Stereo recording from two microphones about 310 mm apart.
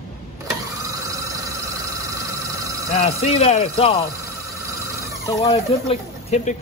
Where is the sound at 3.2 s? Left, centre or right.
Centre.